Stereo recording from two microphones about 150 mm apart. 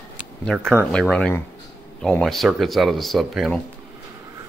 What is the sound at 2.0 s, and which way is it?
Speech, 5° left (ahead or behind).